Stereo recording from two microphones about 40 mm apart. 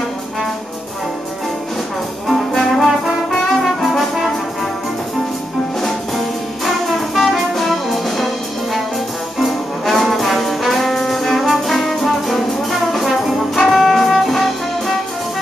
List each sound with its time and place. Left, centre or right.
2.2 s brass instrument: centre
6.6 s music: centre
9.4 s brass instrument: centre